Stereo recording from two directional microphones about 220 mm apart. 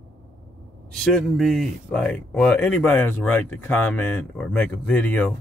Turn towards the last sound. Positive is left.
turn(degrees=5)  # may be behind; listen again after turning